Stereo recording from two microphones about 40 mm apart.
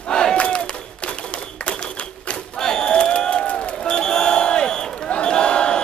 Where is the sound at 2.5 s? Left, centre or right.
Centre.